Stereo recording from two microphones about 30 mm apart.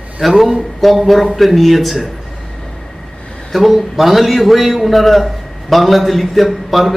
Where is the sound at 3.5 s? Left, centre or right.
Centre.